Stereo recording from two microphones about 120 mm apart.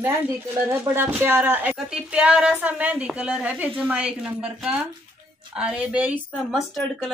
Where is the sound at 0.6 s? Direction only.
20° right (ahead or behind).